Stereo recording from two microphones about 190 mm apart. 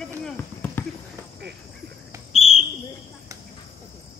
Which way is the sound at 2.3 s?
30° left (ahead or behind).